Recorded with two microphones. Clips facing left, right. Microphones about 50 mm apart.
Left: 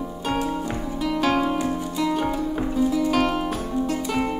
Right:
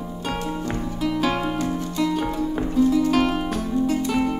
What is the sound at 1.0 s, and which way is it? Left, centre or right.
Music, centre.